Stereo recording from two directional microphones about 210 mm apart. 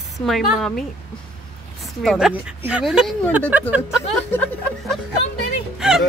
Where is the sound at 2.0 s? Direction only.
Centre (ahead or behind).